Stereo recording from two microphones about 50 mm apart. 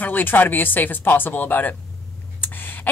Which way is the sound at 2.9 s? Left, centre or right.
Left.